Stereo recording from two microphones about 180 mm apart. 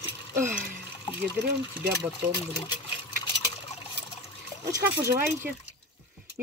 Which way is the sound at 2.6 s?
25° left (ahead or behind).